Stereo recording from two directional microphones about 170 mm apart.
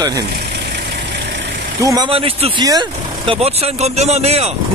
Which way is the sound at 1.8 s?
20° right (ahead or behind).